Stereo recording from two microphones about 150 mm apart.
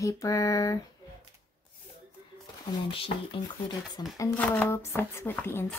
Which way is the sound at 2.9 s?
35° left (ahead or behind).